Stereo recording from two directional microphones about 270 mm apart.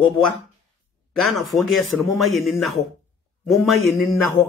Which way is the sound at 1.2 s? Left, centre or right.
Centre.